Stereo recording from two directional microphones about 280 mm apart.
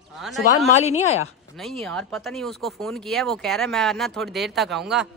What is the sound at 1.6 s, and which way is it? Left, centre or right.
Speech, centre.